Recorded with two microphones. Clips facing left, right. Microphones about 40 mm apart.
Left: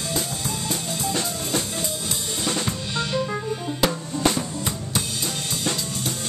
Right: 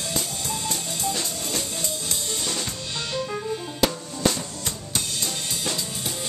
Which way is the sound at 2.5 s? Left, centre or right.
Left.